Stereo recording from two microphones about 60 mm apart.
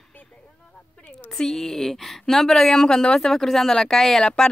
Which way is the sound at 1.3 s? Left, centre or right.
Centre.